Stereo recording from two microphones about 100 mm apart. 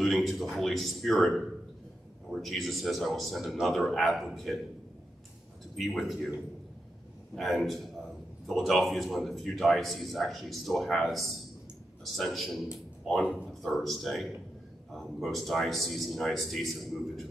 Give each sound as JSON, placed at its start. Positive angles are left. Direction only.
{"t": 0.0, "sound": "a man's voice", "side_deg": 0}
{"t": 5.8, "sound": "a man's voice", "side_deg": 0}
{"t": 7.3, "sound": "a man's voice", "side_deg": 0}